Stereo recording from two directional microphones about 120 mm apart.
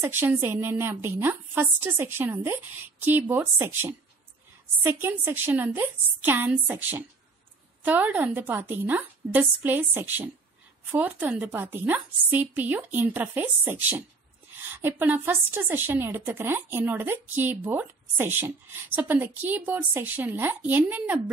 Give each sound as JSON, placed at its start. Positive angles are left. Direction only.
{"t": 0.0, "sound": "a woman's voice", "side_deg": -20}